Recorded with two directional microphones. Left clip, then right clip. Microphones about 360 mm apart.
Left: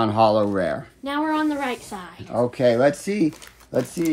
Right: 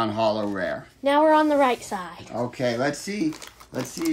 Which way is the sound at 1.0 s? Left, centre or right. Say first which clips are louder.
Right 6 dB; centre.